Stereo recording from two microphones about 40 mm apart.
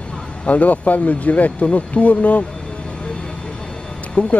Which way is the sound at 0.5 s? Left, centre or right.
Left.